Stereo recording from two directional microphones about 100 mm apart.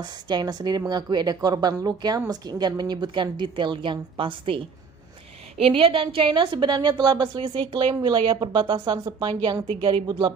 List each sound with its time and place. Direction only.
0.0 s a woman's voice: 45° right (ahead or behind)
5.6 s a woman's voice: 65° right (ahead or behind); by 9.3 s 45° right (ahead or behind)
9.7 s a woman's voice: 65° right (ahead or behind); by 10.3 s 45° right (ahead or behind)